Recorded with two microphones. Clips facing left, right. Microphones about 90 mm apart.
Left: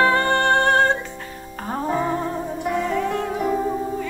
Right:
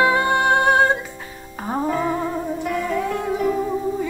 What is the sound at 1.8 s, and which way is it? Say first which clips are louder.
Music: even; 25° left (ahead or behind).